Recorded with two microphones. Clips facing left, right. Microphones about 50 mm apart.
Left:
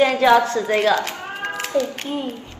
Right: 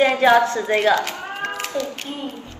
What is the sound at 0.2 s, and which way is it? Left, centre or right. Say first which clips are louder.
Speech: even; centre.